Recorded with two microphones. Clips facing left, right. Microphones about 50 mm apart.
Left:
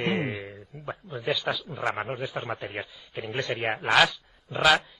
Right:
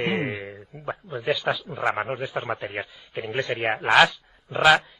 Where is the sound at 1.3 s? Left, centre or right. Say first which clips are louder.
Right 3 dB; centre.